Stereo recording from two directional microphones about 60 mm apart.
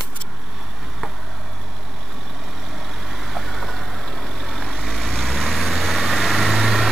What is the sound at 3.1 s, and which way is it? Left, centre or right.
Vehicle, centre.